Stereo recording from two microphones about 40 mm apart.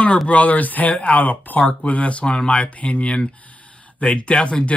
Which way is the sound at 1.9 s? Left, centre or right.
Left.